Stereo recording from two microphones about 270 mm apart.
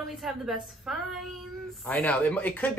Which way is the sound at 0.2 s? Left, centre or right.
Centre.